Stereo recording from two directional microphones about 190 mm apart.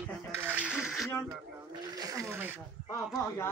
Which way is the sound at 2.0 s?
15° right (ahead or behind).